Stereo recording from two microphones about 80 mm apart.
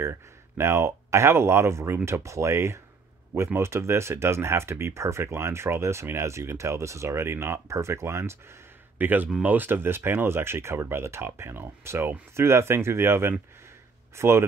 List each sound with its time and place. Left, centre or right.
0.0 s speech: right